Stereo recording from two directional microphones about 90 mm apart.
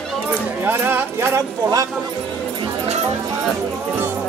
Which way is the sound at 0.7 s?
20° right (ahead or behind).